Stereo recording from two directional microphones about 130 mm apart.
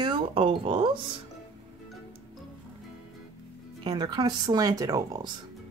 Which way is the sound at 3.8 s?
30° right (ahead or behind).